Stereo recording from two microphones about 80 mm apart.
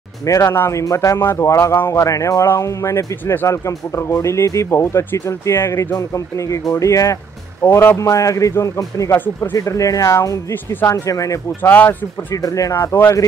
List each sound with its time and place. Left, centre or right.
0.2 s speech: left
0.5 s a man's voice: left
8.0 s speech: left
10.5 s a man's voice: left
10.9 s speech: left
11.6 s a man's voice: left
12.4 s speech: left
12.7 s a man's voice: left